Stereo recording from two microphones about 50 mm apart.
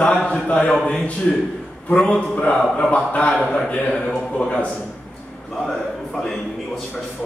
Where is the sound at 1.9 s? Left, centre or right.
Left.